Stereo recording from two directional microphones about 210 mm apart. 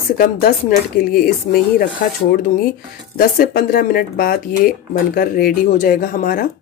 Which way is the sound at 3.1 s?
45° left (ahead or behind).